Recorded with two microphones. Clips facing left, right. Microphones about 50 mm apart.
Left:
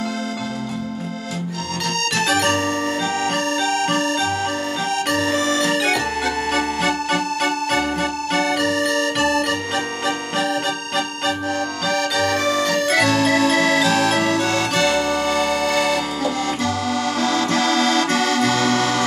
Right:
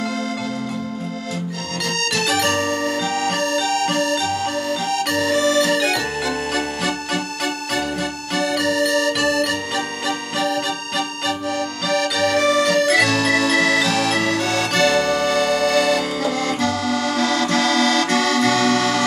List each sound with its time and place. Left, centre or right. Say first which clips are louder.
2.1 s music: left 1 dB; left